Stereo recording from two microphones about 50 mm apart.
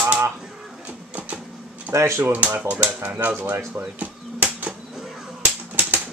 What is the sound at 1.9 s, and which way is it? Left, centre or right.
Speech, right.